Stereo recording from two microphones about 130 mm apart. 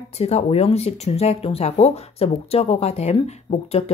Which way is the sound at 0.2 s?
55° left (ahead or behind).